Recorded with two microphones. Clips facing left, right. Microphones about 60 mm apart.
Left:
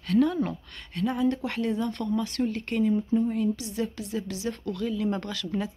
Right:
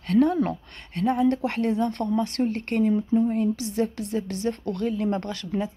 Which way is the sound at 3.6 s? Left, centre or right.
Right.